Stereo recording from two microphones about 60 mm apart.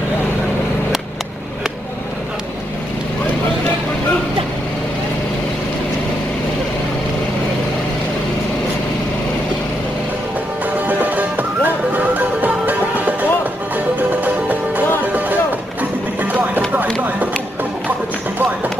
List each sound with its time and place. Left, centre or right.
10.9 s music: right
15.8 s music: right